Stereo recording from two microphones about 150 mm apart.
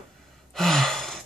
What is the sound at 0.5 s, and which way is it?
Gasp, 5° left (ahead or behind).